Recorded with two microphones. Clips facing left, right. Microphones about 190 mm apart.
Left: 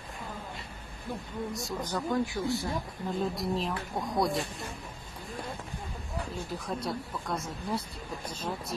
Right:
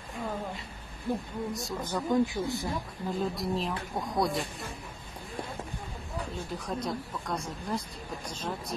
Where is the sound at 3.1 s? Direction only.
Centre (ahead or behind).